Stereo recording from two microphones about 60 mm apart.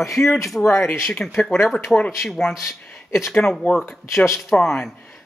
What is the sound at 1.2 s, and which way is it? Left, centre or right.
Speech, centre.